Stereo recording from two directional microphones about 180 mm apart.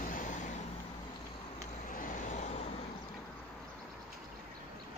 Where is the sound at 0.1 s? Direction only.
45° left (ahead or behind).